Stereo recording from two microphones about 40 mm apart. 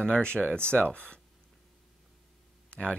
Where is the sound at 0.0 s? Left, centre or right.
Left.